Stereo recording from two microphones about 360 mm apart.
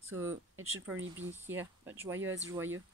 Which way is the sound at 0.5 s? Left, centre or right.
Right.